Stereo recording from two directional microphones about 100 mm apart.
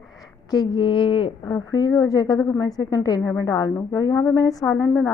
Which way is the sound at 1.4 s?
35° left (ahead or behind).